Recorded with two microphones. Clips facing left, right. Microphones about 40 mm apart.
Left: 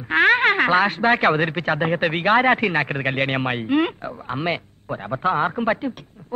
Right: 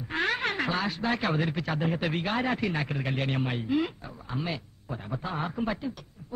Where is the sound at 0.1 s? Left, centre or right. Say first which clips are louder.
Left 13 dB; left.